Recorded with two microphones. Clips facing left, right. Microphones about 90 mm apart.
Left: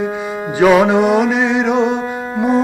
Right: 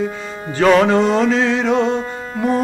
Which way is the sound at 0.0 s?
15° left (ahead or behind).